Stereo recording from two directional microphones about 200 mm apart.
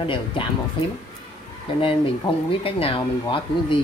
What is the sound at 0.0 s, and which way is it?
Speech, 25° left (ahead or behind).